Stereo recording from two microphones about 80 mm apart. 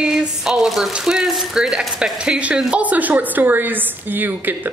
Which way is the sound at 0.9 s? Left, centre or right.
Centre.